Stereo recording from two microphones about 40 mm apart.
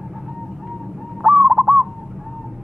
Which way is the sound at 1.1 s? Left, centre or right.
Centre.